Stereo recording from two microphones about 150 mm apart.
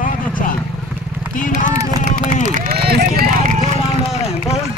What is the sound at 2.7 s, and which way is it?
Vehicle, 90° right.